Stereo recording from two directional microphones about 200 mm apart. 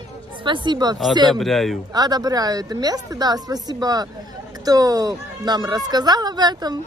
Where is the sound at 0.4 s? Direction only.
25° right (ahead or behind).